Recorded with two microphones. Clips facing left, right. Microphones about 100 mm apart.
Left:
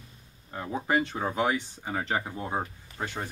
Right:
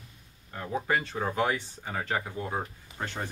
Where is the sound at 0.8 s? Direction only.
20° left (ahead or behind).